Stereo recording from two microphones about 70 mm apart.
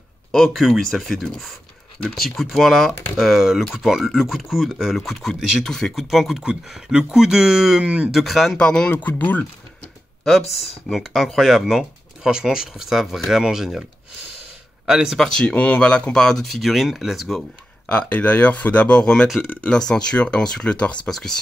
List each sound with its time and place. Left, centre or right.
0.3 s speech: centre
6.7 s speech: centre
7.8 s speech: centre
8.1 s speech: centre
8.5 s speech: centre
9.0 s speech: left
10.9 s speech: centre
14.9 s speech: centre
15.1 s speech: centre
15.5 s speech: left; by 17.4 s centre
17.8 s speech: left
19.4 s speech: left
19.9 s speech: centre